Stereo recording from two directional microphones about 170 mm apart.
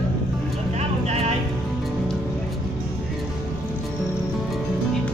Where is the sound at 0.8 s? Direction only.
40° right (ahead or behind).